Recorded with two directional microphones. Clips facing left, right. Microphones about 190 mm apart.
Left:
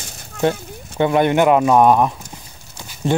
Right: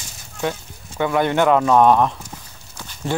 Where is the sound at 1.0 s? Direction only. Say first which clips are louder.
Left 3 dB; 20° left (ahead or behind).